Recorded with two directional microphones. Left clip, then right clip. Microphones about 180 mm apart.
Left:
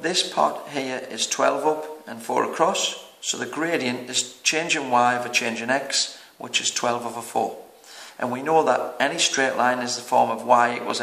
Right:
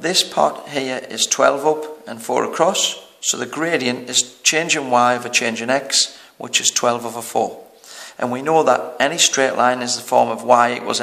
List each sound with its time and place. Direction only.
0.0 s speech: 45° right (ahead or behind)